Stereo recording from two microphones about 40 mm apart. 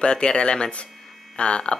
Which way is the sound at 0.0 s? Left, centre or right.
Left.